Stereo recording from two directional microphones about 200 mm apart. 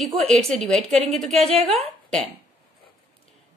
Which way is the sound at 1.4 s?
30° right (ahead or behind).